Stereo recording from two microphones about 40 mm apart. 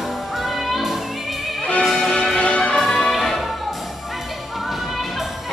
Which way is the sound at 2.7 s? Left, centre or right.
Centre.